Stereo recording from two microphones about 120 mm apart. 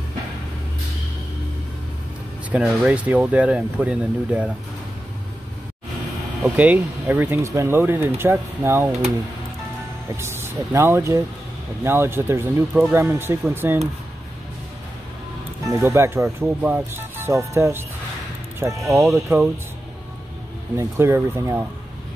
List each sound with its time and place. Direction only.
2.5 s speech: 10° right (ahead or behind)
6.5 s speech: 15° right (ahead or behind)
10.1 s speech: 20° right (ahead or behind)
15.7 s speech: 20° right (ahead or behind)
20.7 s speech: 20° right (ahead or behind)